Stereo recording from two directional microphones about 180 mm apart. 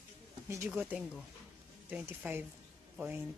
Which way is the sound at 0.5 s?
15° right (ahead or behind).